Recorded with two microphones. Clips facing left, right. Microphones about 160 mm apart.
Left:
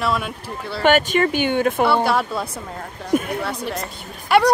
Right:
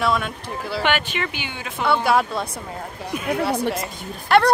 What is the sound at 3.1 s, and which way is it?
Speech, 45° left (ahead or behind).